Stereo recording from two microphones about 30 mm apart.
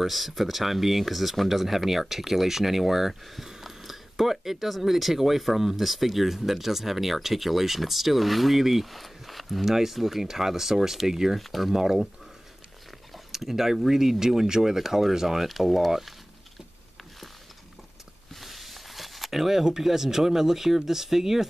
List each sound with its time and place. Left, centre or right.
0.0 s speech: centre
11.3 s speech: centre
11.7 s speech: centre
13.3 s speech: centre
18.3 s speech: centre